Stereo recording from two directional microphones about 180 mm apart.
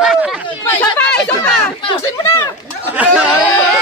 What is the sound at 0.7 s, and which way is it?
Chatter, 10° left (ahead or behind).